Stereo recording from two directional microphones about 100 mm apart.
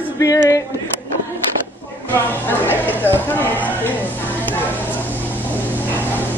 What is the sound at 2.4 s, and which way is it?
Speech, 20° left (ahead or behind).